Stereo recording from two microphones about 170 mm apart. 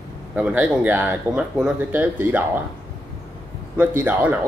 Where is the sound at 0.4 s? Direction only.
10° right (ahead or behind).